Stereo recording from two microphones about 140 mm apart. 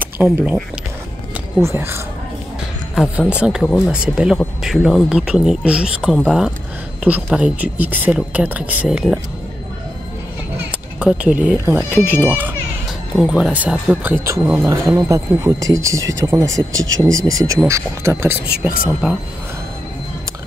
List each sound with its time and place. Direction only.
0.0 s speech: 10° right (ahead or behind)
1.6 s speech: 20° right (ahead or behind)
3.0 s speech: 10° right (ahead or behind)
11.0 s speech: 10° right (ahead or behind)